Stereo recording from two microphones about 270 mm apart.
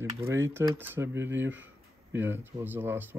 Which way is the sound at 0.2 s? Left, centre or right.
Centre.